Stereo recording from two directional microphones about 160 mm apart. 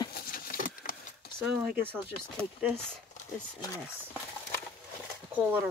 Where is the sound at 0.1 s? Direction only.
65° left (ahead or behind).